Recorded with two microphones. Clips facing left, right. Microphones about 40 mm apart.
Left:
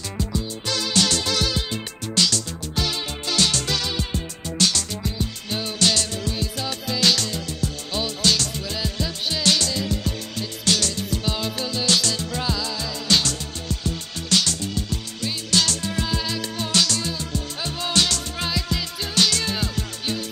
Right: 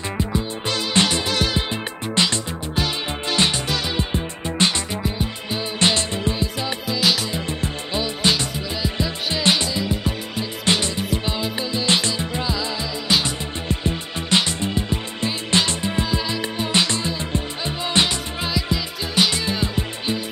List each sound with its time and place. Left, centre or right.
0.2 s music: right
5.8 s music: right